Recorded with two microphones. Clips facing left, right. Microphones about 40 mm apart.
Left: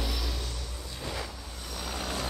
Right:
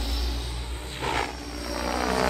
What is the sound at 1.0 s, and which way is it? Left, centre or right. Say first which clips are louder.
Vehicle: right 10 dB; right.